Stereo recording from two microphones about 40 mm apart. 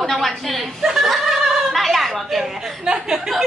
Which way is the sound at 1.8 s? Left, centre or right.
Centre.